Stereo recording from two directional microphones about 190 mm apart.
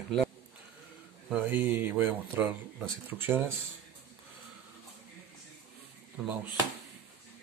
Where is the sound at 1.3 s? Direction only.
10° right (ahead or behind).